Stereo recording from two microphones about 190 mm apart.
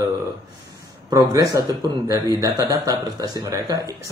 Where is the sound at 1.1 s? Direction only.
15° right (ahead or behind).